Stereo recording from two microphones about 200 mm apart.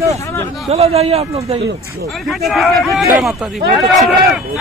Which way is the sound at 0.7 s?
30° right (ahead or behind).